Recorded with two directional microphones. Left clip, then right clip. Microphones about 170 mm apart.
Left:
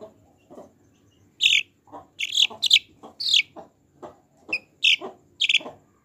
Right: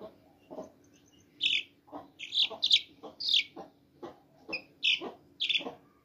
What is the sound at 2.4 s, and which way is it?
Bird, 30° left (ahead or behind).